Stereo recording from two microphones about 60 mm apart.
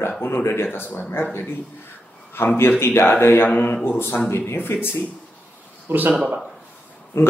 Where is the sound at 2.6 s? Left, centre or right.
Left.